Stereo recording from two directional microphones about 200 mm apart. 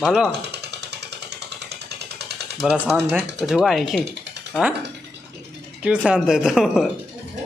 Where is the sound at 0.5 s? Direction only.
55° right (ahead or behind).